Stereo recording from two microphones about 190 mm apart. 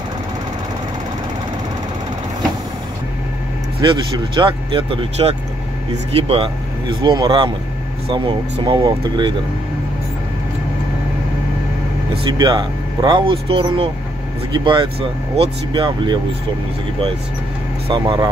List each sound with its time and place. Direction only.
3.8 s speech: 25° right (ahead or behind)
12.4 s speech: 20° right (ahead or behind)
17.8 s speech: 25° right (ahead or behind)